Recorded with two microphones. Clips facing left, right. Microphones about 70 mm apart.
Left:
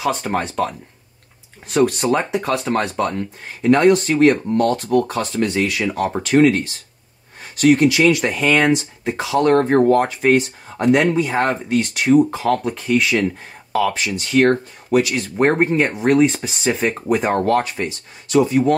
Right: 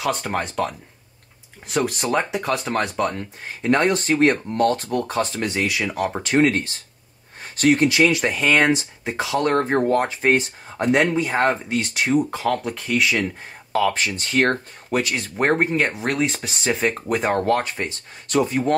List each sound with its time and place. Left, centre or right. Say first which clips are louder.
0.0 s speech: left 3 dB; centre
3.7 s speech: left 5 dB; right
5.4 s speech: left 4 dB; centre
7.5 s speech: left 4 dB; right
8.0 s speech: left 3 dB; centre
10.0 s speech: left 3 dB; right
10.8 s speech: left 3 dB; centre
13.9 s speech: left 4 dB; right
15.1 s speech: left 4 dB; centre
17.7 s speech: left 3 dB; right